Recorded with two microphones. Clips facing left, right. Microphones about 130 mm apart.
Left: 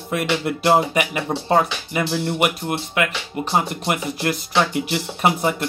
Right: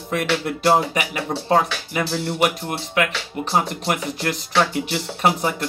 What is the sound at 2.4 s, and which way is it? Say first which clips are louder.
Speech: even; 5° left (ahead or behind).